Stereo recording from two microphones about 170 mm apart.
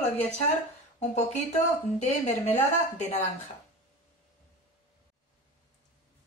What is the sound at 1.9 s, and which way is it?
A woman's voice, 40° left (ahead or behind).